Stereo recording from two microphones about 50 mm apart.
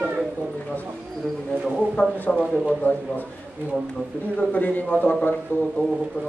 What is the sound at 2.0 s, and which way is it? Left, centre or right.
Speech, left.